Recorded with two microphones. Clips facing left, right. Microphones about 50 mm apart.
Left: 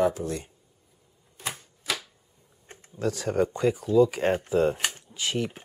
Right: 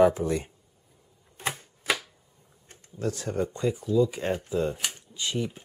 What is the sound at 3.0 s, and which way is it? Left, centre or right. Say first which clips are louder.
Speech: left 2 dB; left.